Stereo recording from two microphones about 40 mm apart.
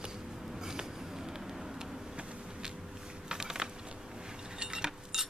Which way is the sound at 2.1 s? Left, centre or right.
Right.